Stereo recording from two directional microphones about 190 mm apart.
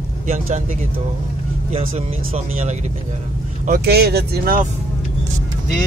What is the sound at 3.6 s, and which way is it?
Speech, 50° right (ahead or behind).